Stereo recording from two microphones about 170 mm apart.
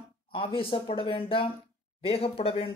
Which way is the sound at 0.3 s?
30° left (ahead or behind).